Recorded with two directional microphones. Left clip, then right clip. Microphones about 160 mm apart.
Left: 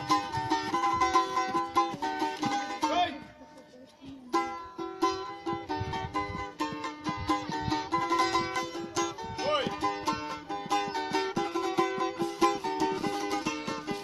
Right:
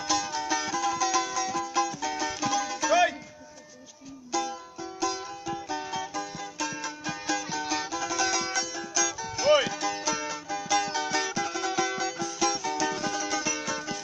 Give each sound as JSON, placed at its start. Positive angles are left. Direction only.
{"t": 0.0, "sound": "music", "side_deg": -15}
{"t": 4.3, "sound": "music", "side_deg": -15}